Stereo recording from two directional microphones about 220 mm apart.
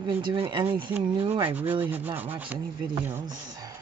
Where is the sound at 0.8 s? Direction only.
10° right (ahead or behind).